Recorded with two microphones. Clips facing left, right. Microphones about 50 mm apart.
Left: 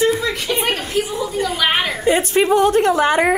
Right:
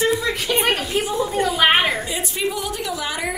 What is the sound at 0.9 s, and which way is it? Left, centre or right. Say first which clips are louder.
Speech: even; right.